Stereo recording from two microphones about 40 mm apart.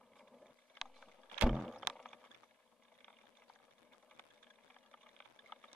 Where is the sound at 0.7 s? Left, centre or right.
Centre.